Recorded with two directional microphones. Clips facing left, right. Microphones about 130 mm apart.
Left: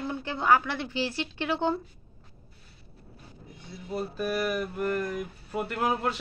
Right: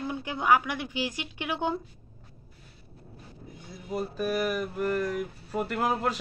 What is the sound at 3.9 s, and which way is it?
Speech, 5° right (ahead or behind).